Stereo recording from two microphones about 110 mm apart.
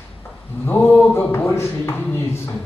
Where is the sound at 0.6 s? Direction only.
15° left (ahead or behind).